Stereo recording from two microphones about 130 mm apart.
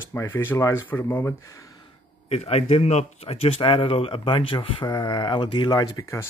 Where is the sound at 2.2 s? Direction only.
50° left (ahead or behind).